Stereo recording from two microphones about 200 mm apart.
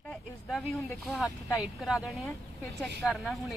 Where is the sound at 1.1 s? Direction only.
5° right (ahead or behind).